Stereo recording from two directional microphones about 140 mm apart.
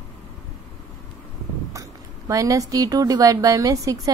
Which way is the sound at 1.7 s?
20° right (ahead or behind).